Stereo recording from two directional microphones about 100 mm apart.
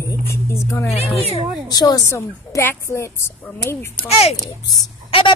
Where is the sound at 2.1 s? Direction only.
30° left (ahead or behind).